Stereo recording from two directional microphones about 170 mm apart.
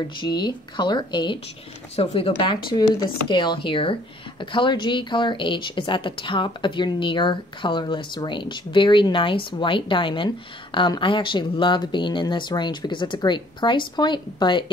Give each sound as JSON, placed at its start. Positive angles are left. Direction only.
{"t": 0.3, "sound": "speech", "side_deg": 25}